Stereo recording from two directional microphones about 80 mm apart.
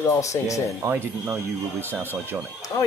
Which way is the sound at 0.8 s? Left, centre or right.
Right.